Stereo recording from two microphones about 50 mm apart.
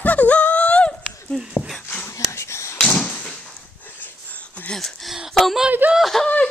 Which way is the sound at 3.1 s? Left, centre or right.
Left.